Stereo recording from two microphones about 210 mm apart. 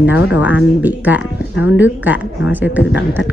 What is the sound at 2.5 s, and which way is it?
Speech, 10° right (ahead or behind).